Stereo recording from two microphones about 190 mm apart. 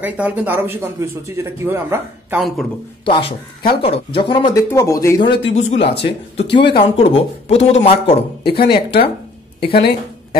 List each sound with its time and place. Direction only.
0.0 s speech: 10° right (ahead or behind)
3.1 s speech: 30° left (ahead or behind)
4.6 s speech: 15° left (ahead or behind)
5.5 s speech: 35° left (ahead or behind)
5.8 s speech: 65° left (ahead or behind)
6.3 s speech: 30° left (ahead or behind)
8.5 s speech: 55° left (ahead or behind)